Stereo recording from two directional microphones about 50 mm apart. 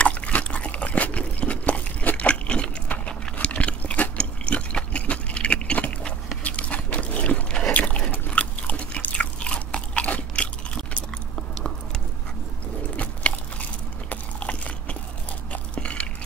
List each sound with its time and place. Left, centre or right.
0.0 s a sound: left
8.1 s biting: left
12.9 s biting: left